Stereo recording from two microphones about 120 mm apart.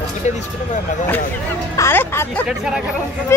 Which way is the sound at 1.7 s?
20° left (ahead or behind).